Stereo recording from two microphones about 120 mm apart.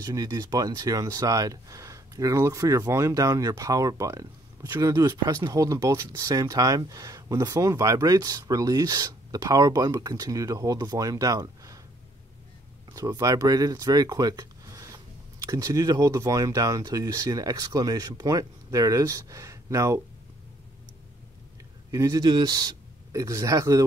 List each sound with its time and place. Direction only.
0.0 s speech: 35° right (ahead or behind)
12.9 s speech: 30° right (ahead or behind)
21.9 s speech: 30° right (ahead or behind)